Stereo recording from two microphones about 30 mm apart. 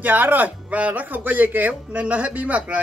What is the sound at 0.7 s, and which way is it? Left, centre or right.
Speech, right.